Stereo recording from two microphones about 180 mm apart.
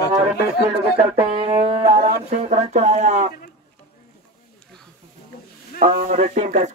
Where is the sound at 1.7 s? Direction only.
35° right (ahead or behind).